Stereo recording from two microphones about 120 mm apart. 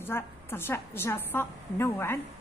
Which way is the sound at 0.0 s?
20° left (ahead or behind).